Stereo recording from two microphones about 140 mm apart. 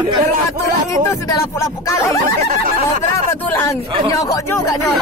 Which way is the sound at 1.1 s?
20° left (ahead or behind).